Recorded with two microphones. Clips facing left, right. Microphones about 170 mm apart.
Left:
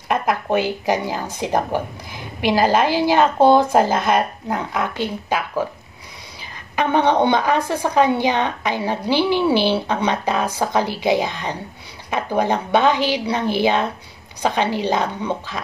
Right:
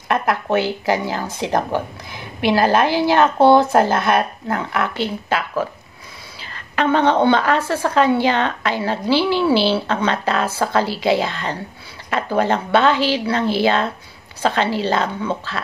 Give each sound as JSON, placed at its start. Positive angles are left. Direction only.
{"t": 0.1, "sound": "a woman's voice", "side_deg": 15}